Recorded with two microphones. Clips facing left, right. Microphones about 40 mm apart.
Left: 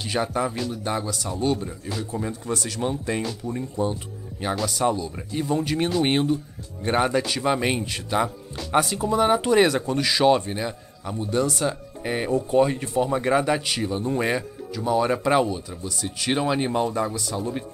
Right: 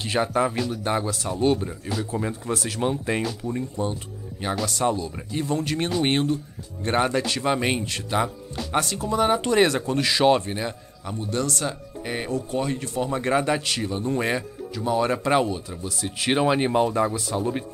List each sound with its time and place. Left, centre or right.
0.0 s speech: centre
1.9 s speech: centre
2.1 s speech: centre
3.3 s speech: centre
11.2 s speech: centre
12.3 s speech: left
13.0 s speech: centre